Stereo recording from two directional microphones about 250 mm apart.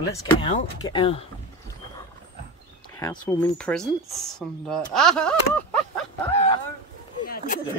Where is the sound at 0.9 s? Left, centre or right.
Left.